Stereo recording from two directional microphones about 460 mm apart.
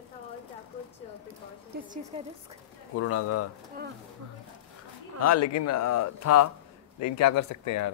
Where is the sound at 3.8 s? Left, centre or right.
Centre.